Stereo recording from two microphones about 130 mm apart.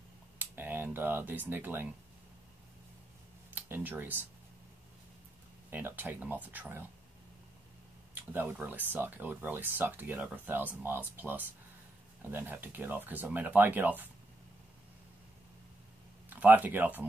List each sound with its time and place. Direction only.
0.4 s speech: 15° right (ahead or behind)
3.5 s speech: 15° right (ahead or behind)
5.7 s speech: 15° right (ahead or behind)
8.1 s speech: 15° right (ahead or behind)
16.3 s speech: 15° right (ahead or behind)